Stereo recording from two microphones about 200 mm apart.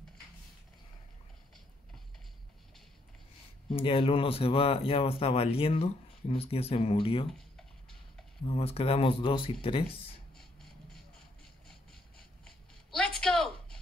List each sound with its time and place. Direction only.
3.7 s speech: 25° left (ahead or behind)
7.2 s typing: centre (ahead or behind)
8.5 s speech: 30° left (ahead or behind)
10.3 s vehicle: centre (ahead or behind)
12.4 s a sound: 5° left (ahead or behind)